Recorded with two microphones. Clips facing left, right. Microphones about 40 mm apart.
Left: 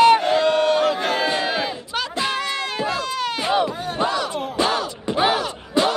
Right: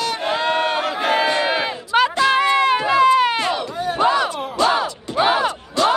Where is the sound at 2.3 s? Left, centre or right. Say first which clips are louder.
Right 9 dB; right.